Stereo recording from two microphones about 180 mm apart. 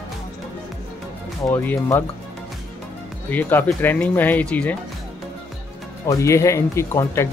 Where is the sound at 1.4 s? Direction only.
15° left (ahead or behind).